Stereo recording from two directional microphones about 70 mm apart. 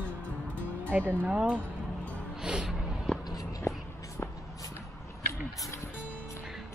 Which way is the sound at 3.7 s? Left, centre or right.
Left.